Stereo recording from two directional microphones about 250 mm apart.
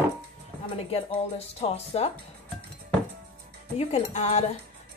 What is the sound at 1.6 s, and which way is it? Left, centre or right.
Speech, left.